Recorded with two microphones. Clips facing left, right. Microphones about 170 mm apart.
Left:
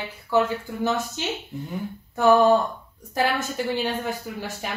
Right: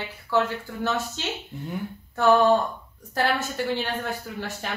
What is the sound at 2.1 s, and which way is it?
Speech, 10° left (ahead or behind).